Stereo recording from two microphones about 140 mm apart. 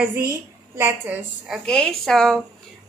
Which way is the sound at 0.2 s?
20° right (ahead or behind).